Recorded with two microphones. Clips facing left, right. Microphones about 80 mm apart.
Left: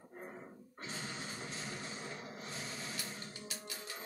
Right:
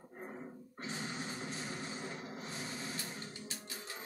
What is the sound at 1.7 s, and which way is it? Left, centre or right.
Rub, right.